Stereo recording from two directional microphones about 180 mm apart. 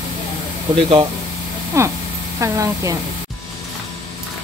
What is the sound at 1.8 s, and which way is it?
Speech, 15° right (ahead or behind).